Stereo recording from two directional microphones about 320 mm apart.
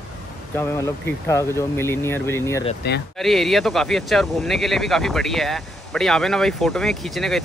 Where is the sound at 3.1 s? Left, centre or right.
Centre.